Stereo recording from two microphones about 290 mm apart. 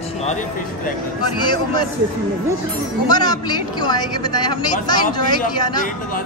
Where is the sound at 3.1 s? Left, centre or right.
Centre.